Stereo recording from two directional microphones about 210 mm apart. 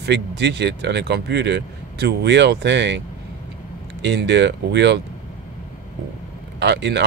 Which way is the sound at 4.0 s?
55° right (ahead or behind).